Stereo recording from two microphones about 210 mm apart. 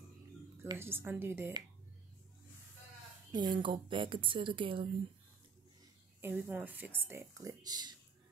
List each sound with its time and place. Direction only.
0.6 s speech: 10° right (ahead or behind)
3.3 s speech: 20° right (ahead or behind)
6.2 s speech: 10° right (ahead or behind)